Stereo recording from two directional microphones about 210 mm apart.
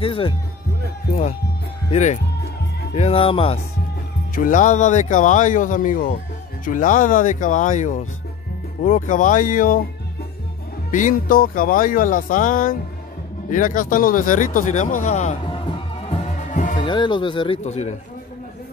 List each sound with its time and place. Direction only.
0.0 s speech: 25° left (ahead or behind)
1.9 s speech: 35° left (ahead or behind)
4.4 s speech: 35° left (ahead or behind)
10.9 s speech: 40° left (ahead or behind)
16.3 s music: 35° left (ahead or behind)
16.7 s speech: 20° left (ahead or behind)